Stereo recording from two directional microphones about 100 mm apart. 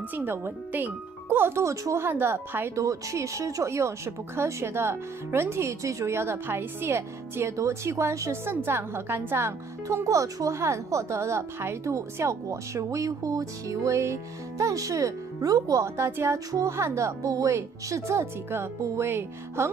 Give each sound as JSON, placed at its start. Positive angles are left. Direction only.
{"t": 0.1, "sound": "speech", "side_deg": -20}